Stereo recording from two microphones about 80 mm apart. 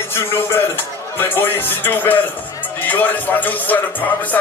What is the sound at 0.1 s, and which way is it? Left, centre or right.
A man's voice, left.